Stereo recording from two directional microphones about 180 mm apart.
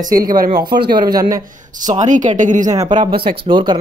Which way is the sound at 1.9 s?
45° right (ahead or behind).